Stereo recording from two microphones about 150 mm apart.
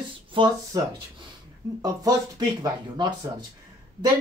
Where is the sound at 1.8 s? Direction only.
25° right (ahead or behind).